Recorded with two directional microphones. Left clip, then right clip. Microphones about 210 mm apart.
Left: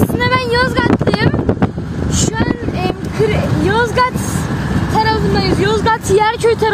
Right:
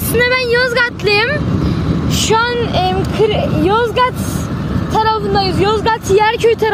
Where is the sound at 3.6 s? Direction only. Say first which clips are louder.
Even; 5° right (ahead or behind).